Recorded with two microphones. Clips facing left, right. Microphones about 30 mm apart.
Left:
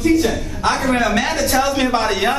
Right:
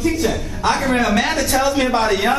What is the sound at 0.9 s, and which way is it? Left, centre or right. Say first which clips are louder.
Speech: even; right.